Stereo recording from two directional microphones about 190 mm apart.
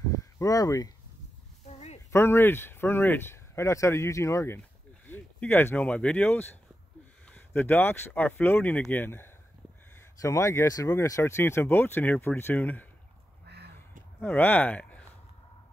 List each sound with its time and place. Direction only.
0.1 s a sound: 15° left (ahead or behind)
2.1 s speech: 10° left (ahead or behind)
14.2 s speech: 10° left (ahead or behind)